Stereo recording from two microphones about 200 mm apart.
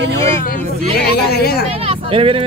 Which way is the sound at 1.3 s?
50° left (ahead or behind).